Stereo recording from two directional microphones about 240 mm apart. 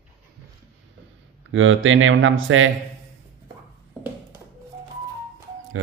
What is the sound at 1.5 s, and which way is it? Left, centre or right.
Speech, right.